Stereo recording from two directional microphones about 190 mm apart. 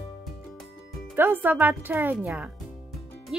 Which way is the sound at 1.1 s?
10° right (ahead or behind).